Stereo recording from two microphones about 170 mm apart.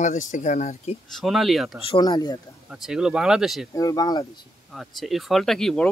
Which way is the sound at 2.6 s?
5° right (ahead or behind).